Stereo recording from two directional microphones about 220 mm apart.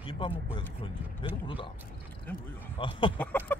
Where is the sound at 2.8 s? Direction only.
25° left (ahead or behind).